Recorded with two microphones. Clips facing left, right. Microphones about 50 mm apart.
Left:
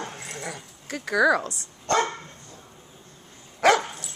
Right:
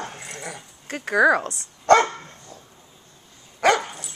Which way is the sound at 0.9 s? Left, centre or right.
Right.